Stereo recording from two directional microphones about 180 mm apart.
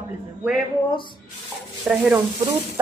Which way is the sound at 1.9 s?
5° right (ahead or behind).